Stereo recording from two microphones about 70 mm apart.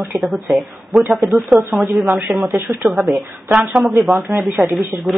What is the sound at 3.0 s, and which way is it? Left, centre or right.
Speech, centre.